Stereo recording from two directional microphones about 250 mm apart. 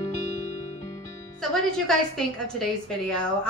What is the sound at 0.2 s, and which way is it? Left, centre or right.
Music, left.